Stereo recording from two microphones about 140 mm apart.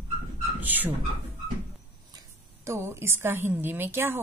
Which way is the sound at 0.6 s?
15° right (ahead or behind).